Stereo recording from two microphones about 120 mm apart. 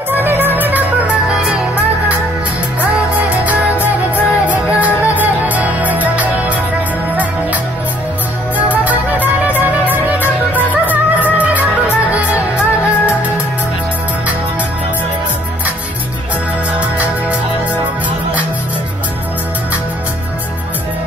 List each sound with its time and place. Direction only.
0.1 s music: 15° right (ahead or behind)
2.8 s music: 15° right (ahead or behind)
8.5 s music: 15° right (ahead or behind)